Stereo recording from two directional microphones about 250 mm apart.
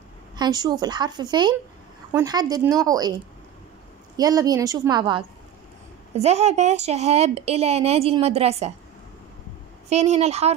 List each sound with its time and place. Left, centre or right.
0.4 s speech: centre
4.2 s speech: centre
9.8 s speech: right